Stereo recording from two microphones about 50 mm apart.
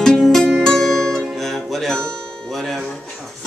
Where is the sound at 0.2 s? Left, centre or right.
Centre.